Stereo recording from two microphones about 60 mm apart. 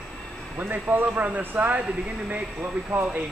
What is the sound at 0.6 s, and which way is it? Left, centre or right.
Speech, right.